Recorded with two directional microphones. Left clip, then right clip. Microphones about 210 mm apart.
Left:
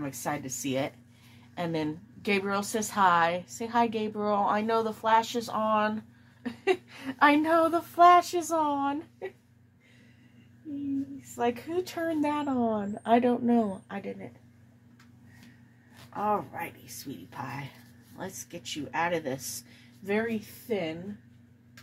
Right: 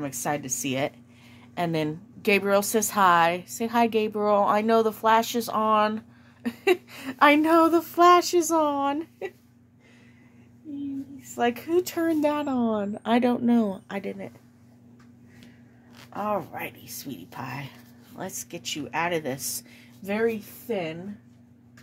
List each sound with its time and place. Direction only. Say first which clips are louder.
0.0 s a woman's voice: right 4 dB; 60° right (ahead or behind)
11.3 s a woman's voice: right 5 dB; 55° right (ahead or behind)
16.1 s a woman's voice: right 1 dB; 60° right (ahead or behind)